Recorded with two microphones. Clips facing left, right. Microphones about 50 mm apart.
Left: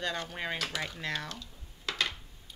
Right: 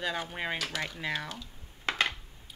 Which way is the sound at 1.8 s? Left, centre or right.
Right.